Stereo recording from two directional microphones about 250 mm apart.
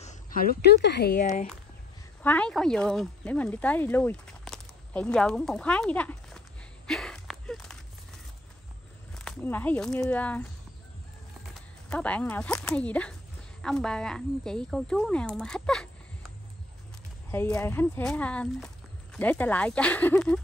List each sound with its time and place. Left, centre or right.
0.0 s speech: left
2.2 s speech: centre
6.9 s a sound: centre
9.1 s a woman's voice: centre
17.3 s speech: centre